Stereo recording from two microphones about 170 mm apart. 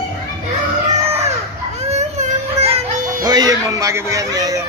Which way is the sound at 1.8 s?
40° right (ahead or behind).